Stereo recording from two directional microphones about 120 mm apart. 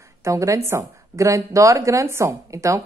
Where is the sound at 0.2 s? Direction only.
25° right (ahead or behind).